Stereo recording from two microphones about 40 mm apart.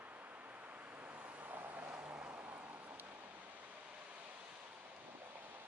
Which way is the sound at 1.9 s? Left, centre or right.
Right.